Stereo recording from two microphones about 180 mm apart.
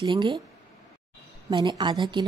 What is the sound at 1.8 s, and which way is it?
Speech, 25° right (ahead or behind).